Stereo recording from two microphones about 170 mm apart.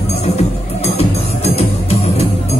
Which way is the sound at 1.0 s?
40° left (ahead or behind).